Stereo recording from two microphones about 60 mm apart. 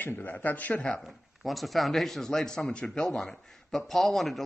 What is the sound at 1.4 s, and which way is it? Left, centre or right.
A man's voice, centre.